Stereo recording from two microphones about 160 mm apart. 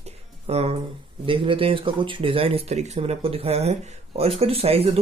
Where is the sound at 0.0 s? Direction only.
40° right (ahead or behind).